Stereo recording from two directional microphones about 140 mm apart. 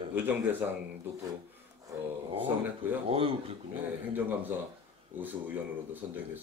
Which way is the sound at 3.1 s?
40° right (ahead or behind).